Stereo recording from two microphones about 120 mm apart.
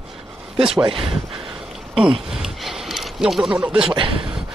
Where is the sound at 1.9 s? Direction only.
5° right (ahead or behind).